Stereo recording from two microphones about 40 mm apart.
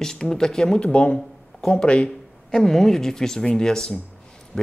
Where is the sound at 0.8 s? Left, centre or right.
Left.